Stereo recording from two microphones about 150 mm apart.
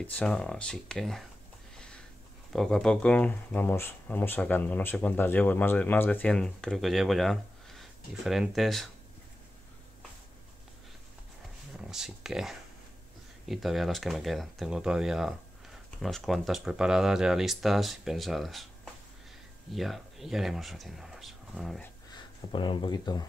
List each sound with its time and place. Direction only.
0.0 s speech: 10° left (ahead or behind)
2.5 s speech: 5° left (ahead or behind)
11.7 s speech: 5° right (ahead or behind)
19.7 s speech: centre (ahead or behind)
22.5 s speech: 30° left (ahead or behind)